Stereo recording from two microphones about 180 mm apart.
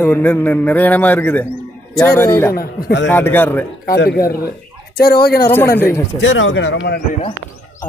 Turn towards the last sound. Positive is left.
turn(degrees=85)